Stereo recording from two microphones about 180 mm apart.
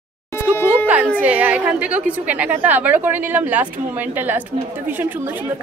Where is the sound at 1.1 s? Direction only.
10° right (ahead or behind).